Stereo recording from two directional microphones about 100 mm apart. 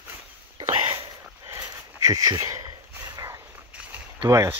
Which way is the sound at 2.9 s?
25° right (ahead or behind).